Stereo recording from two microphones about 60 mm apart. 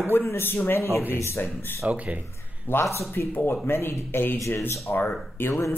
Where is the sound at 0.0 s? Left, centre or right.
Left.